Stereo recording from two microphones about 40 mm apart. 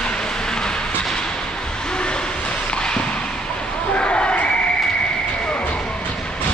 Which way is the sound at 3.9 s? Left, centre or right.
Left.